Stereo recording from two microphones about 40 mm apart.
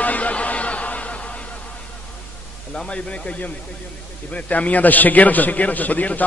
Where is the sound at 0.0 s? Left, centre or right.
Left.